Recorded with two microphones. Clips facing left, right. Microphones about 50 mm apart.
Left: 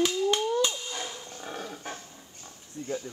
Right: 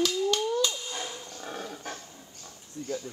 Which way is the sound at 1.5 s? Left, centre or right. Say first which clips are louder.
Even; centre.